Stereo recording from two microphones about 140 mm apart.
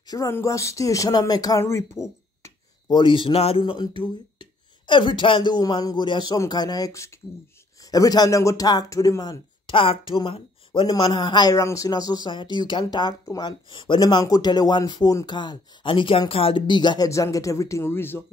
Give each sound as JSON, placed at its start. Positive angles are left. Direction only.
{"t": 0.0, "sound": "speech", "side_deg": 25}
{"t": 2.9, "sound": "speech", "side_deg": 35}